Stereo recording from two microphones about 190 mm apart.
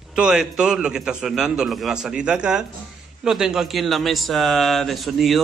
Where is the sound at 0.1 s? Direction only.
5° right (ahead or behind).